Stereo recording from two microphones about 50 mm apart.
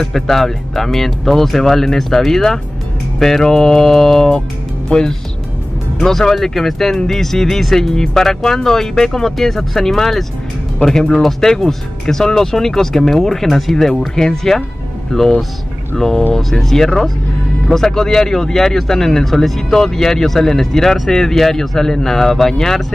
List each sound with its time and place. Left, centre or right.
0.0 s speech: centre